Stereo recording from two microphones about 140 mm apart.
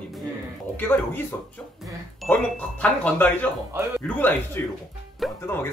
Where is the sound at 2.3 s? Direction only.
10° left (ahead or behind).